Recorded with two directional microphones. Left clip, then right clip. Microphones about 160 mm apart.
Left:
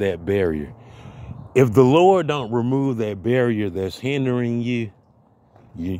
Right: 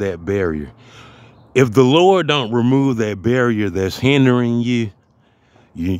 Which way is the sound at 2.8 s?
30° right (ahead or behind).